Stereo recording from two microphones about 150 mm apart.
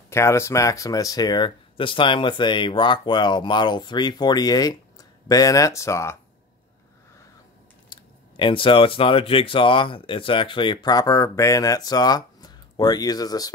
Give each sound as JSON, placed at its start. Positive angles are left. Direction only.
{"t": 0.1, "sound": "speech", "side_deg": 20}
{"t": 7.9, "sound": "speech", "side_deg": 35}